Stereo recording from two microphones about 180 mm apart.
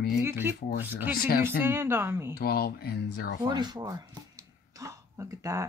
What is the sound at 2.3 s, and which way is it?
Speech, 60° left (ahead or behind).